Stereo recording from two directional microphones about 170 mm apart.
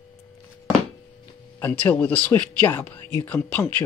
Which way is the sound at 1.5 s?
10° left (ahead or behind).